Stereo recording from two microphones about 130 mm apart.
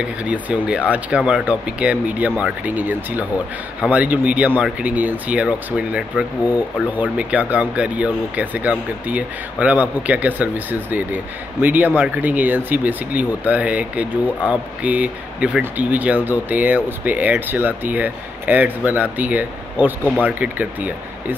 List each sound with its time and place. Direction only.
0.0 s speech: 10° right (ahead or behind)